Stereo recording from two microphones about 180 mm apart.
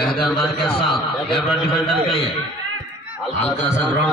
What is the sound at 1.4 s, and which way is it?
Speech, 30° left (ahead or behind).